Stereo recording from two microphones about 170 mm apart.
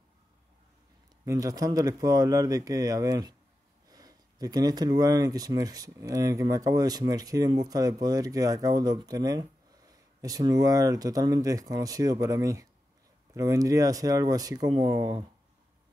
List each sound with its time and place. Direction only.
1.2 s speech: 20° right (ahead or behind)